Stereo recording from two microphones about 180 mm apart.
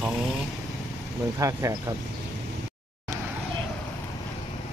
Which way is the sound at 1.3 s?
15° right (ahead or behind).